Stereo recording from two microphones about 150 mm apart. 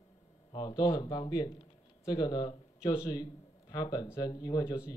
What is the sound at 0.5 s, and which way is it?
A man's voice, 30° left (ahead or behind).